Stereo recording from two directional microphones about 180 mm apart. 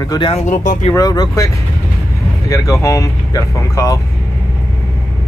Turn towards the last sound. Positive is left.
turn(degrees=15)  # may be behind; listen again after turning